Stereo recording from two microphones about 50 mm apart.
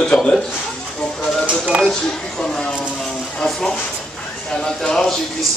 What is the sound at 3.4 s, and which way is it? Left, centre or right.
A man's voice, centre.